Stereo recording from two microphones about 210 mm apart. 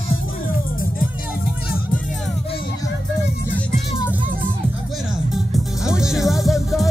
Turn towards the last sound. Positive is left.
turn(degrees=0)  # may be behind; listen again after turning